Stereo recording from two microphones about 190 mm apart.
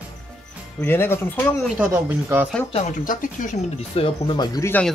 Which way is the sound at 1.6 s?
10° right (ahead or behind).